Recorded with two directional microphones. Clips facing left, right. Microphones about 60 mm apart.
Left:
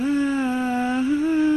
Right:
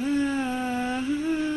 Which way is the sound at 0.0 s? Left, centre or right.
Left.